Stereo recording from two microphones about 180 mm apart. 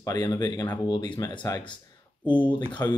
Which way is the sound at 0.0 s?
20° left (ahead or behind).